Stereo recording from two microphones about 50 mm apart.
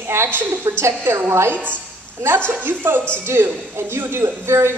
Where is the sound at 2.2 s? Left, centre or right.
Right.